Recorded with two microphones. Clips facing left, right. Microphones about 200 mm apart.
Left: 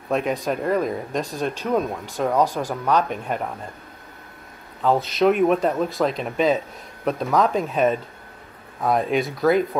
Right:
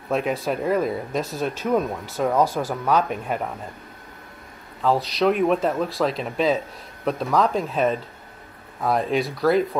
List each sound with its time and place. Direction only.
0.1 s speech: centre (ahead or behind)
2.4 s speech: 15° left (ahead or behind)
2.7 s speech: centre (ahead or behind)
4.8 s speech: centre (ahead or behind)